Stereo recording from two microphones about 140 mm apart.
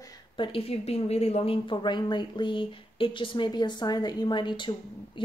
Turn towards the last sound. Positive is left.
turn(degrees=35)  # may be behind; listen again after turning